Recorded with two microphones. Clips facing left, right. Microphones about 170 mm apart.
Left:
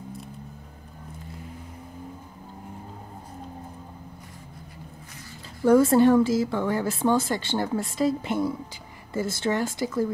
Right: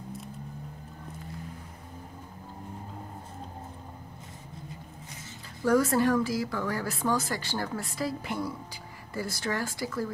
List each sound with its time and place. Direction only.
5.6 s speech: 25° left (ahead or behind)